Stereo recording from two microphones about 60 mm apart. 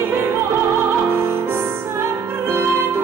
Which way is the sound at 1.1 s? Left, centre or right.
Right.